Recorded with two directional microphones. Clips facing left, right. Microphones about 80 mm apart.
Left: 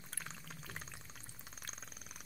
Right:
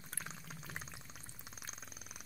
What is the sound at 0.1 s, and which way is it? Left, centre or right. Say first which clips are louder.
Pour: right 1 dB; centre.